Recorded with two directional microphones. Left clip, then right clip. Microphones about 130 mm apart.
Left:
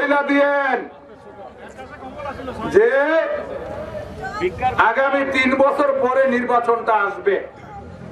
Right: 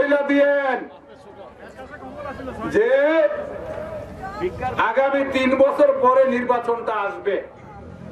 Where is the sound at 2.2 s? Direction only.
20° left (ahead or behind).